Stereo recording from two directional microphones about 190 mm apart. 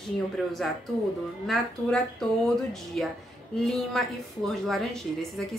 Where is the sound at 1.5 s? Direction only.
Centre (ahead or behind).